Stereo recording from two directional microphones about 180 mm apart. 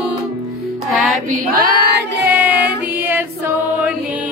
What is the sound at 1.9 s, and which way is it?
Choir, 10° right (ahead or behind).